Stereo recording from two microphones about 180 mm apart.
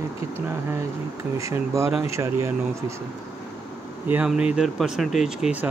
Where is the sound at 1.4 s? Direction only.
15° right (ahead or behind).